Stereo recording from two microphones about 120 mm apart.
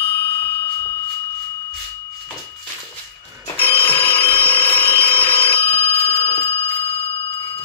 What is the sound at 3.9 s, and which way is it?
Alarm, 20° left (ahead or behind).